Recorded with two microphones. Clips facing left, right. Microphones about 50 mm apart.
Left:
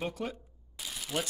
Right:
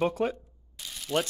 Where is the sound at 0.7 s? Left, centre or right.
Centre.